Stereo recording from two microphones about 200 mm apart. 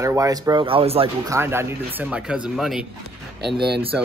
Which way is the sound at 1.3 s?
10° right (ahead or behind).